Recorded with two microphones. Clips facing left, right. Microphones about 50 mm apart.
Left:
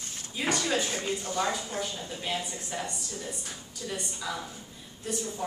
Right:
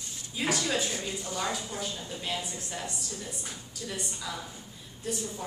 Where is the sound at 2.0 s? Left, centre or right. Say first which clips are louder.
Left 1 dB; centre.